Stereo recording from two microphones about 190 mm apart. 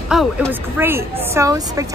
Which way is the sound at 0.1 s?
Centre (ahead or behind).